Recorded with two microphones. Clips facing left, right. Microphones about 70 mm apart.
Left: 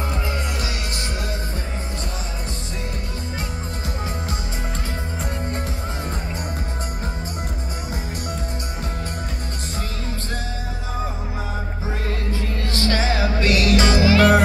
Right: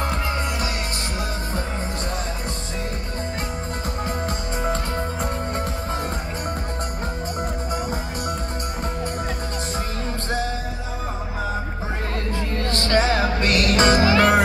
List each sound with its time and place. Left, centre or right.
12.7 s music: right